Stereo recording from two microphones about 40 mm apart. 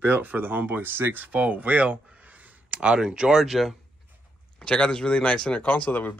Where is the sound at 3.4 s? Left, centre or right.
Centre.